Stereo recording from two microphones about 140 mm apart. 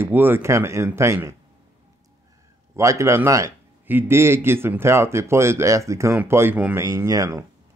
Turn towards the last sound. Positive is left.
turn(degrees=-25)  # may be behind; listen again after turning